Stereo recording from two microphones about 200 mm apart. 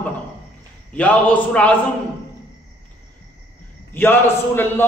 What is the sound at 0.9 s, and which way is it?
Speech, 5° left (ahead or behind).